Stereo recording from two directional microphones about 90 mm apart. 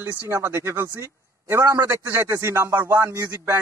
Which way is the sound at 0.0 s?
25° right (ahead or behind).